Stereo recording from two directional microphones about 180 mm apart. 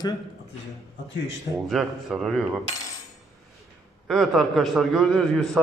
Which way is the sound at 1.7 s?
Centre (ahead or behind).